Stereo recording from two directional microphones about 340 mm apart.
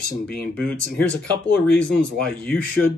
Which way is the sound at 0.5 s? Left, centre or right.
Centre.